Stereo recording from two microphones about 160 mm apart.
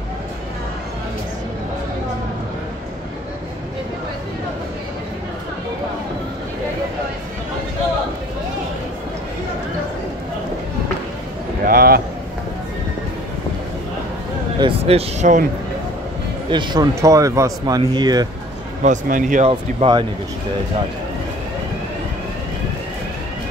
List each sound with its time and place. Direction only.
11.6 s a sound: 65° right (ahead or behind)
14.6 s speech: 40° right (ahead or behind)
16.4 s speech: 30° right (ahead or behind)
18.8 s speech: 55° right (ahead or behind)
19.5 s speech: 30° right (ahead or behind)